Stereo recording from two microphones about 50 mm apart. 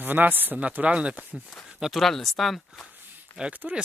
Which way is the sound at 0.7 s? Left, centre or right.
Right.